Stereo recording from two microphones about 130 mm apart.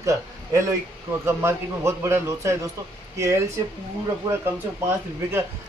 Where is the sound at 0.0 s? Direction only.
25° right (ahead or behind).